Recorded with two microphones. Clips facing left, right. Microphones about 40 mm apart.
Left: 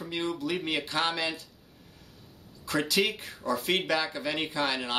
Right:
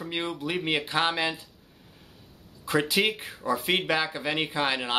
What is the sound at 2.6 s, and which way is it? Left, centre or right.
Speech, right.